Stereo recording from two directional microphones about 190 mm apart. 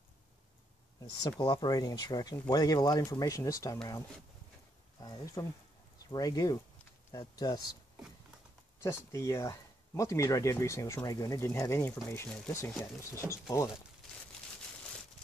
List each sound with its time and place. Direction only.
1.2 s speech: 25° left (ahead or behind)
5.0 s speech: 20° left (ahead or behind)
8.8 s speech: 15° left (ahead or behind)